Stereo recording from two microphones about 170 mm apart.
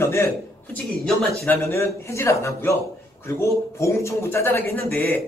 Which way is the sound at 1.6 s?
15° left (ahead or behind).